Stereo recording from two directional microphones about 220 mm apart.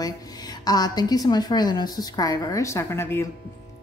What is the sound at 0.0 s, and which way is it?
A woman's voice, 20° left (ahead or behind).